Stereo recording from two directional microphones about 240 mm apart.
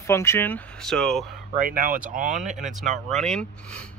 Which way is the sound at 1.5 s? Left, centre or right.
Right.